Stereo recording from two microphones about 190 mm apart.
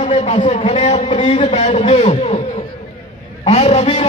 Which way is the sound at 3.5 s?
35° left (ahead or behind).